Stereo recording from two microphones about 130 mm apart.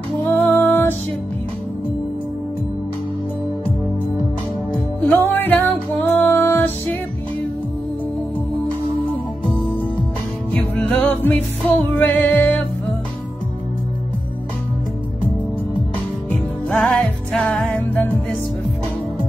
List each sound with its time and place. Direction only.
0.2 s music: 15° left (ahead or behind)
5.0 s music: 15° left (ahead or behind)
10.5 s music: 10° left (ahead or behind)
16.6 s music: 5° left (ahead or behind)